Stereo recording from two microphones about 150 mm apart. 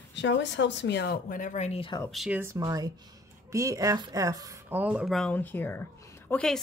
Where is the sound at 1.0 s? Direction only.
80° left; by 1.9 s 45° left (ahead or behind).